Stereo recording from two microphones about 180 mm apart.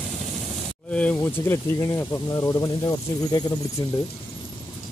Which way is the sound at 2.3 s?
20° left (ahead or behind).